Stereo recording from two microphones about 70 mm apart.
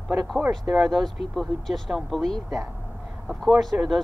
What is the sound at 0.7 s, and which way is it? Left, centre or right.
Speech, centre.